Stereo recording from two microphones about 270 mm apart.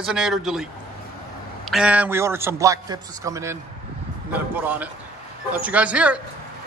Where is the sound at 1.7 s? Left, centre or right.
Centre.